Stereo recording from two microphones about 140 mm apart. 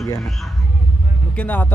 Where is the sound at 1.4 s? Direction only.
10° left (ahead or behind).